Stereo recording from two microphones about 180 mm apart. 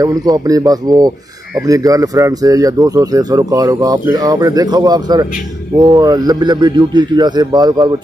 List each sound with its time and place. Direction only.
0.0 s speech: 20° right (ahead or behind)